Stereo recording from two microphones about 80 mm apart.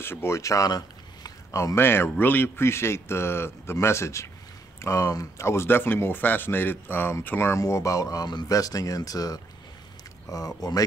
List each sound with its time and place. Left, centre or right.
0.0 s a man's voice: left
0.7 s a sound: left
1.5 s speech: left
1.8 s a man's voice: left
7.5 s speech: left